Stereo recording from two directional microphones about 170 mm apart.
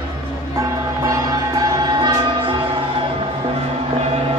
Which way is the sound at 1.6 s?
25° right (ahead or behind).